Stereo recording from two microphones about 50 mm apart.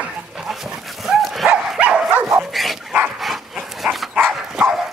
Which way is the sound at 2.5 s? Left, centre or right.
Centre.